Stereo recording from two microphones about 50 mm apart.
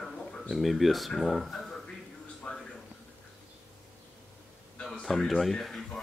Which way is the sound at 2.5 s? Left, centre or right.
Left.